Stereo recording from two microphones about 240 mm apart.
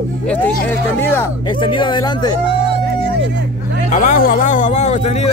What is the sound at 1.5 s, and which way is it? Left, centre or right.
Speech, centre.